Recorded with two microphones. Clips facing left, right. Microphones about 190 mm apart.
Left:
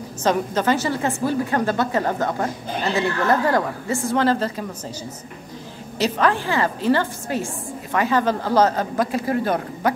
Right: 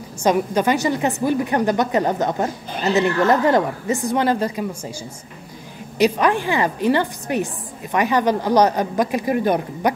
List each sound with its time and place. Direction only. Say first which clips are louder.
0.2 s a woman's voice: right 3 dB; 15° right (ahead or behind)
5.9 s a woman's voice: right 3 dB; 15° right (ahead or behind)